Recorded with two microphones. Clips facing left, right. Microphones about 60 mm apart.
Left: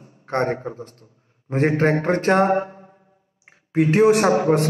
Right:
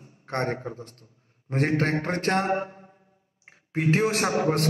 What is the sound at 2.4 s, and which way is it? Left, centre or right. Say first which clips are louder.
Mantra: left 7 dB; left.